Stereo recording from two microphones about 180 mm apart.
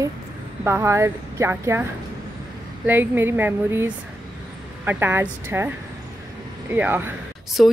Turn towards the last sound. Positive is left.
turn(degrees=0)  # may be behind; listen again after turning